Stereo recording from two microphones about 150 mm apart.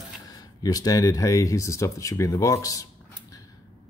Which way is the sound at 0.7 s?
25° left (ahead or behind).